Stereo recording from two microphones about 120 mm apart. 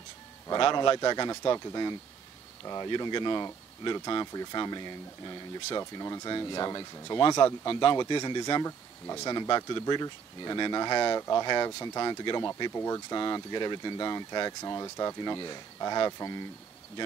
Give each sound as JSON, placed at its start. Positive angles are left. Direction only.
{"t": 0.5, "sound": "speech", "side_deg": 40}